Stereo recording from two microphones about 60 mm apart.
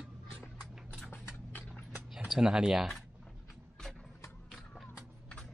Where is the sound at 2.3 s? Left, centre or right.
Centre.